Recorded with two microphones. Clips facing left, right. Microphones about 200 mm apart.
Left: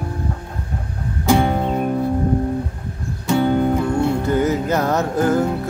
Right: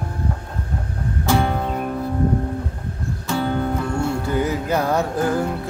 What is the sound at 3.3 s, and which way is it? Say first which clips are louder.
Music: left 6 dB; 20° left (ahead or behind).